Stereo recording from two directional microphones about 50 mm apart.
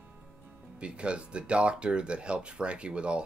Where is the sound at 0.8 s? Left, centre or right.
Right.